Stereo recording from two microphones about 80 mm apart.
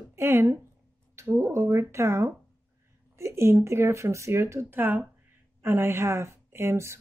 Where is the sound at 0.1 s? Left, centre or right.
Right.